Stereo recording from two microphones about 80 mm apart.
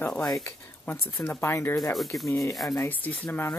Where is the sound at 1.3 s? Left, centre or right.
Left.